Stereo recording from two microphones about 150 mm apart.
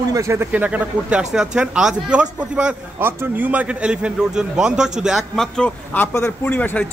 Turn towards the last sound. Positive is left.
turn(degrees=10)  # may be behind; listen again after turning